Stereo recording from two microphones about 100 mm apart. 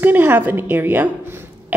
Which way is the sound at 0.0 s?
20° right (ahead or behind).